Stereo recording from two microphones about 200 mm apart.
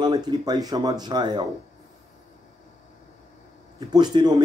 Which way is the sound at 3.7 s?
25° right (ahead or behind).